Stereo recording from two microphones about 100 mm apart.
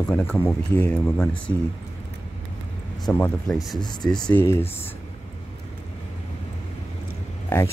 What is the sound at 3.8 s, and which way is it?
Speech, 45° left (ahead or behind).